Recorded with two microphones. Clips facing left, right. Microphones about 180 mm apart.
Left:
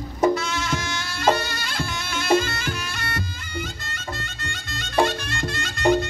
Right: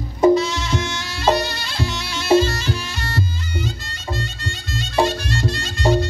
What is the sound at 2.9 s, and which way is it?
Music, 55° left (ahead or behind).